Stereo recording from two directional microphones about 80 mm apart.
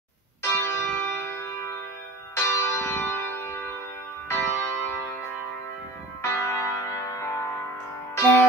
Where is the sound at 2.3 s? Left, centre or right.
Left.